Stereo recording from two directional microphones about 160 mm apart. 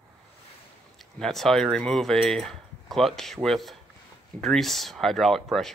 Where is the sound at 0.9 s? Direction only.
Centre (ahead or behind).